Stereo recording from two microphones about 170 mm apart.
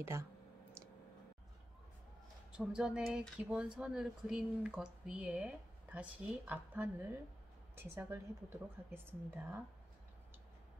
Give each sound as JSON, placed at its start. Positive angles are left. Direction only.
{"t": 0.0, "sound": "speech", "side_deg": -15}
{"t": 2.5, "sound": "speech", "side_deg": -5}